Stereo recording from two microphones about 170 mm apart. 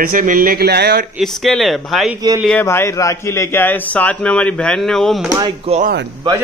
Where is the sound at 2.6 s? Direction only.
15° left (ahead or behind).